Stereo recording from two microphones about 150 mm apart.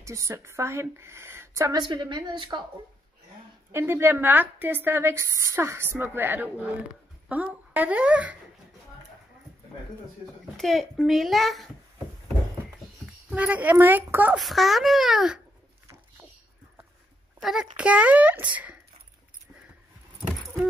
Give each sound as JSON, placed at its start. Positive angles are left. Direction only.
{"t": 0.0, "sound": "a woman's voice", "side_deg": -20}
{"t": 3.7, "sound": "a woman's voice", "side_deg": -15}
{"t": 10.6, "sound": "a child's voice", "side_deg": 0}
{"t": 13.3, "sound": "a woman's voice", "side_deg": -10}
{"t": 14.4, "sound": "a child's voice", "side_deg": 0}
{"t": 17.4, "sound": "a child's voice", "side_deg": -5}